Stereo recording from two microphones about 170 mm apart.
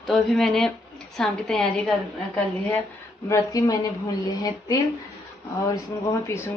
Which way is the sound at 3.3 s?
20° left (ahead or behind).